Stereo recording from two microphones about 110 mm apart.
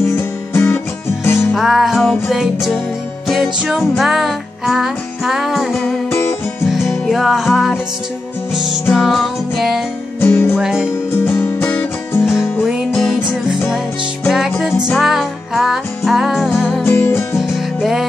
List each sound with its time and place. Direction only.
0.0 s music: 25° left (ahead or behind)
1.5 s music: 5° right (ahead or behind)
6.0 s music: 25° left (ahead or behind)
6.7 s music: centre (ahead or behind)
8.9 s music: centre (ahead or behind)
10.2 s music: 25° left (ahead or behind)
10.5 s music: 5° right (ahead or behind)
11.1 s music: 20° left (ahead or behind)
14.2 s music: centre (ahead or behind)
16.8 s music: 20° left (ahead or behind)
17.4 s music: centre (ahead or behind)